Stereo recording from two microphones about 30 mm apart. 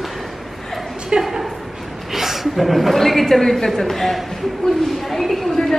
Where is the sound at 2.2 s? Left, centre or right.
Centre.